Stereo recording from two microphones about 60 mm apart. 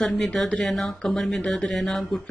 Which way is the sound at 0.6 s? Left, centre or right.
Centre.